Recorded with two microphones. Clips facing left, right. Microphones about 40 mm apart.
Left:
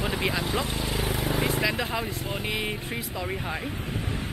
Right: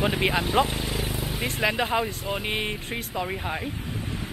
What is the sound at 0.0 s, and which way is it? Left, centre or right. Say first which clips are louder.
Speech: right 4 dB; right.